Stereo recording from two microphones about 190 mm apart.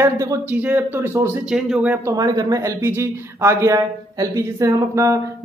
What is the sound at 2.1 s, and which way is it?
Speech, 20° right (ahead or behind).